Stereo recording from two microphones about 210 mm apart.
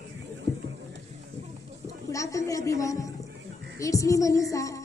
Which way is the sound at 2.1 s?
15° left (ahead or behind).